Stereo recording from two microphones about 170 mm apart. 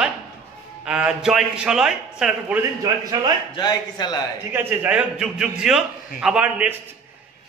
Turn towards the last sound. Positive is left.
turn(degrees=-5)  # may be behind; listen again after turning